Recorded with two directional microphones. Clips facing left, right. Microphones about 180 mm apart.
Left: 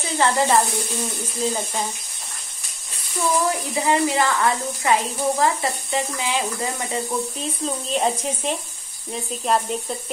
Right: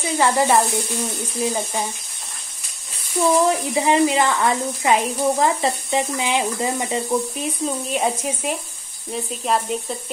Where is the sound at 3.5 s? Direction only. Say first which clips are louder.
Right 3 dB; 20° right (ahead or behind).